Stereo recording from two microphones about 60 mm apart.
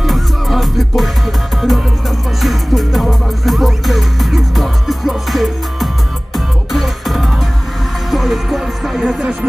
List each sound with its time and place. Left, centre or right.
0.0 s music: centre
9.2 s music: centre